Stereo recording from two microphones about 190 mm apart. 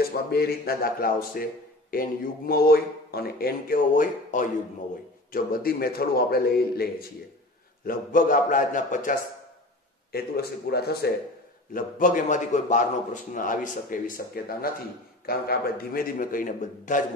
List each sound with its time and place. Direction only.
0.0 s a man's voice: 55° left (ahead or behind)
10.1 s speech: 55° left (ahead or behind)
11.7 s a man's voice: 45° left (ahead or behind)